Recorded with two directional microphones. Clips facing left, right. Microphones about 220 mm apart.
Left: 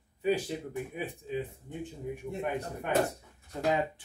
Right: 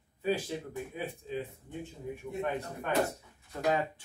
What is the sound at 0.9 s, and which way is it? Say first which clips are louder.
Speech: even; 15° left (ahead or behind).